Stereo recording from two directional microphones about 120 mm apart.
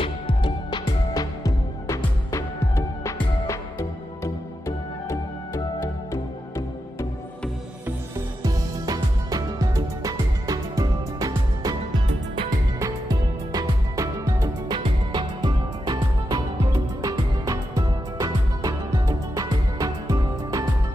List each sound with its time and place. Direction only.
0.0 s music: 45° left (ahead or behind); by 5.6 s 25° left (ahead or behind)
8.4 s music: 30° right (ahead or behind)
12.7 s music: 30° right (ahead or behind)
14.8 s music: 40° right (ahead or behind)